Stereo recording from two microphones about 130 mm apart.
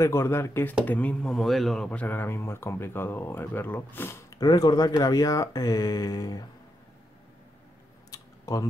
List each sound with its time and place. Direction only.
0.0 s speech: 20° left (ahead or behind); by 1.9 s centre (ahead or behind)
1.9 s speech: 15° left (ahead or behind)
4.4 s speech: 30° left (ahead or behind)
8.1 s a sound: 25° left (ahead or behind)